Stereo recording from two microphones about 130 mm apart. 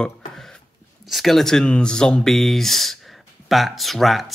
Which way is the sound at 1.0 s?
Centre (ahead or behind).